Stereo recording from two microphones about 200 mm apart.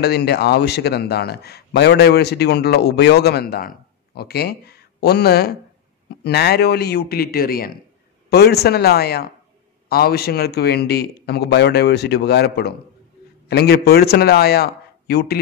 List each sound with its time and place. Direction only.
0.0 s a man's voice: 55° left (ahead or behind)